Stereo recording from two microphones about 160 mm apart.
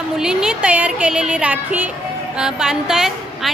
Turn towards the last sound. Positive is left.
turn(degrees=-5)  # may be behind; listen again after turning